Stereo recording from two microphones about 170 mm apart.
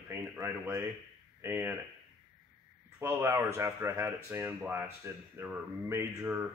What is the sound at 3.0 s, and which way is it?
Speech, 15° right (ahead or behind).